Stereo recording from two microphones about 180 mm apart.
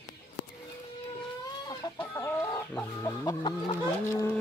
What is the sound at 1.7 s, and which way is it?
Chicken, 20° left (ahead or behind).